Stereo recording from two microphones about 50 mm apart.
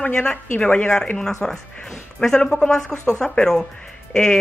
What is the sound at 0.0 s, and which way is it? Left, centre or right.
A woman's voice, left.